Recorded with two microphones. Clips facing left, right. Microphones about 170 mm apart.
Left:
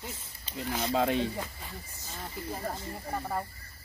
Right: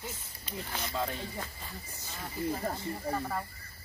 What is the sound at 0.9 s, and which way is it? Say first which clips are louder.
Speech: left 8 dB; 75° left (ahead or behind).